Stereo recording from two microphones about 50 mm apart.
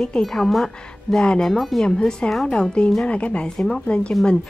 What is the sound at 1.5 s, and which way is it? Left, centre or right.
Speech, centre.